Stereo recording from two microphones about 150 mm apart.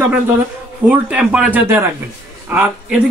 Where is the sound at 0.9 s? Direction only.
5° right (ahead or behind).